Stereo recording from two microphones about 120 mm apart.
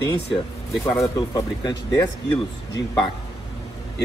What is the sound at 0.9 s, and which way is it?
Speech, 30° left (ahead or behind).